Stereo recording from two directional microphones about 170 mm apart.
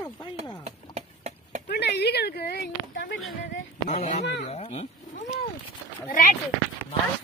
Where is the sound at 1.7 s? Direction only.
75° left (ahead or behind).